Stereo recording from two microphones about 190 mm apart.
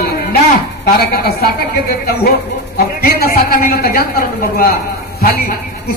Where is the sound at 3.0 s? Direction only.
50° left (ahead or behind).